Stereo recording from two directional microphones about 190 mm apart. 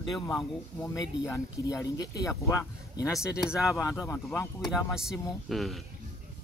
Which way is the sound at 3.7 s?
15° left (ahead or behind).